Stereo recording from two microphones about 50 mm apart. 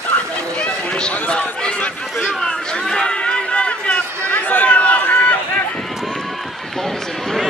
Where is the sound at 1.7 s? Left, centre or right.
Left.